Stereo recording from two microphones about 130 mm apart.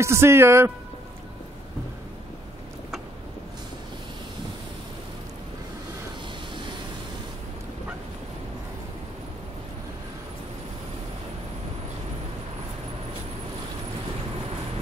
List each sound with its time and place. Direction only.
0.0 s speech: 20° right (ahead or behind)